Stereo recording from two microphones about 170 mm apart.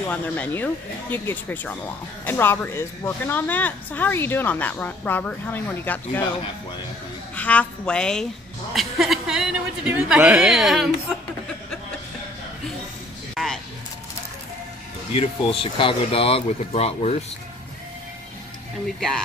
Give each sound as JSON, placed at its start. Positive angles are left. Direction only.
{"t": 0.1, "sound": "speech", "side_deg": 10}
{"t": 7.3, "sound": "a woman's voice", "side_deg": 10}
{"t": 13.3, "sound": "a sound", "side_deg": 0}
{"t": 15.1, "sound": "speech", "side_deg": 30}
{"t": 18.9, "sound": "a woman's voice", "side_deg": 0}